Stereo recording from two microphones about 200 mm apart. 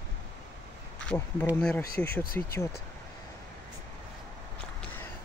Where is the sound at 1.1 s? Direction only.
10° left (ahead or behind).